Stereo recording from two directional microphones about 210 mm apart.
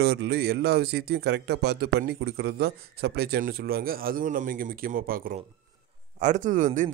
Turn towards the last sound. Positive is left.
turn(degrees=-40)  # may be behind; listen again after turning